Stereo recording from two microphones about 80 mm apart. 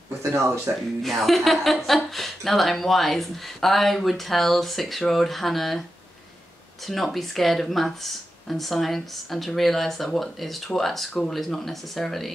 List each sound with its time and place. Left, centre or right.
0.7 s speech: right
1.0 s speech: centre
6.9 s speech: centre